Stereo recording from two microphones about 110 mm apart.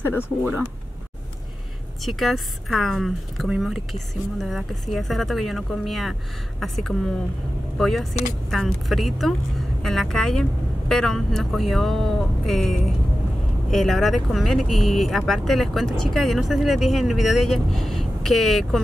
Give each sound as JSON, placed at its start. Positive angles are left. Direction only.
{"t": 0.0, "sound": "speech", "side_deg": 20}
{"t": 2.0, "sound": "speech", "side_deg": 0}